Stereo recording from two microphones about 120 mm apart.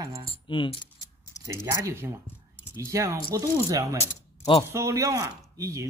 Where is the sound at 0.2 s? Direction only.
45° left (ahead or behind).